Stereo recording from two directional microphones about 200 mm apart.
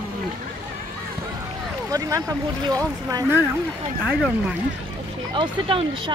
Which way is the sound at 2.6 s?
20° right (ahead or behind).